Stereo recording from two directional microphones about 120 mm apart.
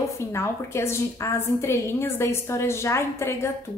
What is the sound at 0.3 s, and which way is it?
A woman's voice, 20° left (ahead or behind).